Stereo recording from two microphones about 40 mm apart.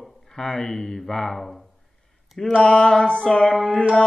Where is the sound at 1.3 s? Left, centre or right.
Centre.